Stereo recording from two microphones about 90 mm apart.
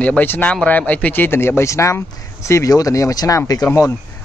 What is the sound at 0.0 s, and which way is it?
A man's voice, 15° left (ahead or behind).